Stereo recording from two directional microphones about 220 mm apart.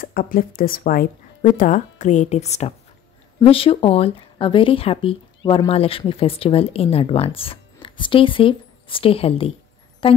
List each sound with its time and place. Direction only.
0.0 s speech: 40° left (ahead or behind); by 10.2 s 25° left (ahead or behind)